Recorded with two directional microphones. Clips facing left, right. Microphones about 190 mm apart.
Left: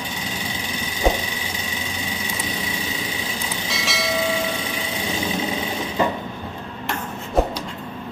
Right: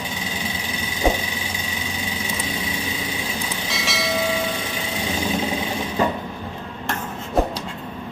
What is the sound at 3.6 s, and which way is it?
Train, centre (ahead or behind).